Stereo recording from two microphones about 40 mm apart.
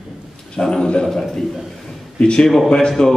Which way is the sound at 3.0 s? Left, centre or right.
Centre.